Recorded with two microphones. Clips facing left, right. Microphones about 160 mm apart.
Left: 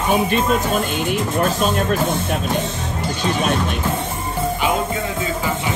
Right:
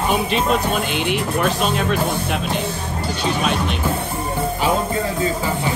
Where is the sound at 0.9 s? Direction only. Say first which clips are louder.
Even; 45° left (ahead or behind).